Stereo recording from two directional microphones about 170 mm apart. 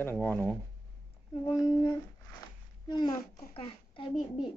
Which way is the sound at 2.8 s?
25° left (ahead or behind).